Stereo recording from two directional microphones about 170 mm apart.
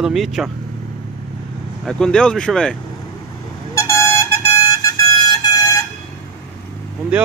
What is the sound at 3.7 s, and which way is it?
Vehicle, 15° left (ahead or behind).